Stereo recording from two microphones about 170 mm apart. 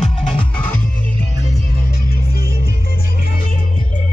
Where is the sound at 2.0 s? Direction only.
60° left (ahead or behind).